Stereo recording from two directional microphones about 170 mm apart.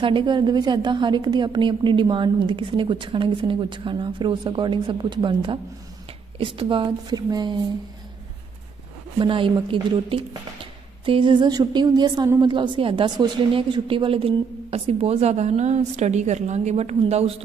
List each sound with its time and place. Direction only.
0.0 s a woman's voice: 30° right (ahead or behind)
9.2 s a woman's voice: 30° right (ahead or behind)